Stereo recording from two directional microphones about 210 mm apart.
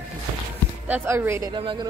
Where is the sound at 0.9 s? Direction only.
10° right (ahead or behind).